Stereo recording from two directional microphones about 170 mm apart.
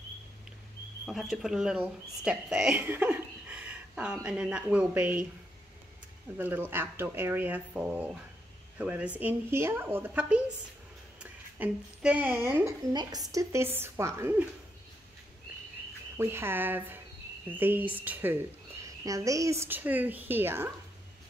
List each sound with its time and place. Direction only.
1.0 s speech: centre (ahead or behind)
6.3 s speech: 10° right (ahead or behind)
11.5 s speech: 10° right (ahead or behind)
16.2 s speech: 15° right (ahead or behind)